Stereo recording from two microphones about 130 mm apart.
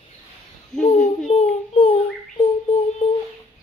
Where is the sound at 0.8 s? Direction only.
70° left (ahead or behind).